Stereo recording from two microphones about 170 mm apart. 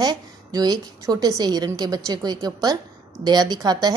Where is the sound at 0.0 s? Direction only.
25° right (ahead or behind).